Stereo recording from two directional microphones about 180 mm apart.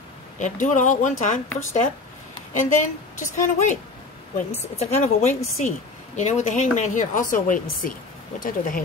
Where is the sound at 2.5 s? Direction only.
45° left (ahead or behind).